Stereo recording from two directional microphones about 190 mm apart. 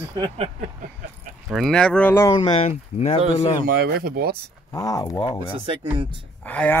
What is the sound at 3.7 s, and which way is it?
Speech, 55° right (ahead or behind).